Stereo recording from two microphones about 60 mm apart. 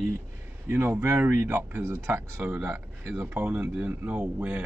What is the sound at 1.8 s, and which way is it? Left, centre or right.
Speech, right.